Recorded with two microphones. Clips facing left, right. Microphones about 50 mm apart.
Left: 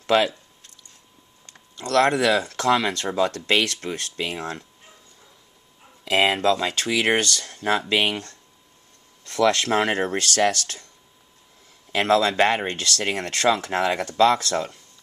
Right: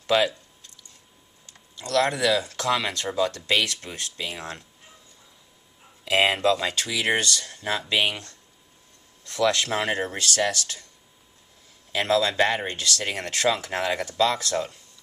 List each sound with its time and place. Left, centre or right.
0.0 s speech: left
1.4 s speech: left
6.3 s speech: left
6.7 s speech: left
11.9 s speech: left